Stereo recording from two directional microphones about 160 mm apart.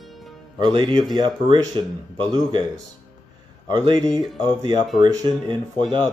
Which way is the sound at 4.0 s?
5° left (ahead or behind).